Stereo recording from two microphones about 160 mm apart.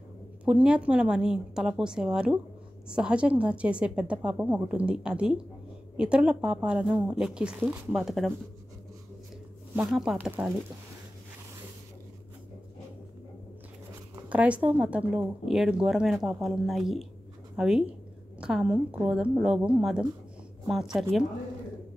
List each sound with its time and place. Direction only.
0.5 s a woman's voice: 5° right (ahead or behind)
7.9 s a woman's voice: centre (ahead or behind)
9.8 s a woman's voice: 5° right (ahead or behind)
14.3 s a woman's voice: 10° right (ahead or behind)